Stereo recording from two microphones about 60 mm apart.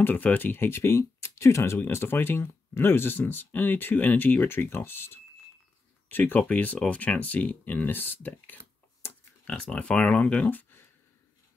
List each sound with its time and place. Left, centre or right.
0.0 s speech: left
9.0 s a sound: left
9.4 s speech: left